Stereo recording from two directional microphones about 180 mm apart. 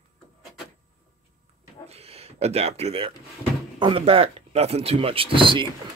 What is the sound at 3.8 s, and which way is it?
Speech, 30° right (ahead or behind).